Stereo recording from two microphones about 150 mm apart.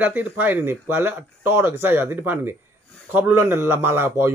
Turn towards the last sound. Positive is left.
turn(degrees=-15)  # may be behind; listen again after turning